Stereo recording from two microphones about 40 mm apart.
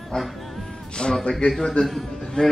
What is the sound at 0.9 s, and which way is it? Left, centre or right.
Speech, left.